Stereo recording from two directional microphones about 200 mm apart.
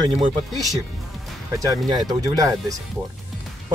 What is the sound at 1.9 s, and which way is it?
Speech, 20° right (ahead or behind).